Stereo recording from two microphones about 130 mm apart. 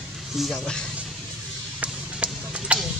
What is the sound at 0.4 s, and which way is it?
Speech, 5° left (ahead or behind).